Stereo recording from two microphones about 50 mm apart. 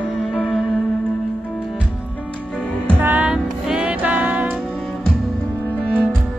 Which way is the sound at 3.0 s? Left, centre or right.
Right.